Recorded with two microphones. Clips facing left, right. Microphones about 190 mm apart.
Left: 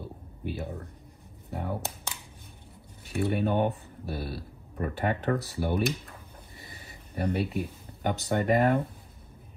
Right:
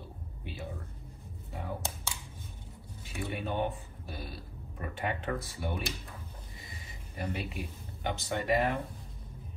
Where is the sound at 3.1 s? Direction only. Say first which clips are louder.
Left 8 dB; 60° left (ahead or behind).